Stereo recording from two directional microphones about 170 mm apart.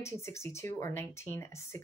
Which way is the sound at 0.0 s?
15° left (ahead or behind).